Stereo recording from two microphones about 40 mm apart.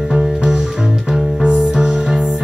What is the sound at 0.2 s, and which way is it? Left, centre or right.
Music, centre.